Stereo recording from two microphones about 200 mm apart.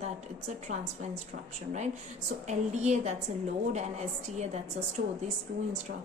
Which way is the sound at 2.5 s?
35° right (ahead or behind).